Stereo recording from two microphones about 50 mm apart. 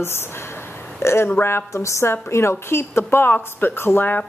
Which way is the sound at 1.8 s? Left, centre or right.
Left.